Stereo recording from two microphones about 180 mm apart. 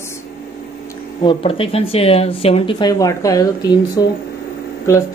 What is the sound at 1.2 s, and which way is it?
Speech, 30° left (ahead or behind).